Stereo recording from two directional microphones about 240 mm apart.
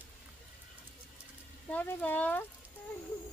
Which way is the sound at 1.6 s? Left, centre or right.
Centre.